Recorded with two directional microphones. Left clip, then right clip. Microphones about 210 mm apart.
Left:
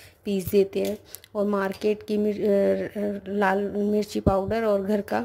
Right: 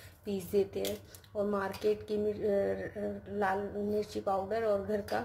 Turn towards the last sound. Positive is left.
turn(degrees=45)  # may be behind; listen again after turning